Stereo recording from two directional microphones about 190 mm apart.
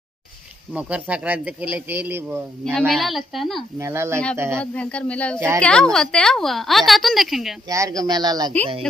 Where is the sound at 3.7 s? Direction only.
15° right (ahead or behind).